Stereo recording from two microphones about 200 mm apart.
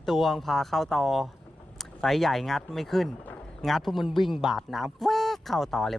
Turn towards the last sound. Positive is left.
turn(degrees=0)  # may be behind; listen again after turning